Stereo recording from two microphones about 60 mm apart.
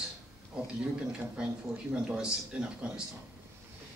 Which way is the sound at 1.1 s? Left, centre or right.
Centre.